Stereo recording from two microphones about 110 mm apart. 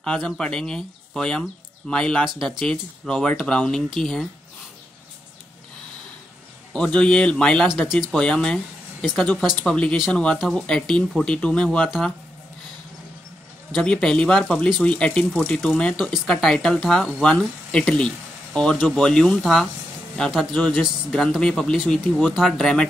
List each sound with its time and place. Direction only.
0.0 s speech: 5° left (ahead or behind)
6.7 s speech: 10° left (ahead or behind)
13.7 s speech: 5° left (ahead or behind)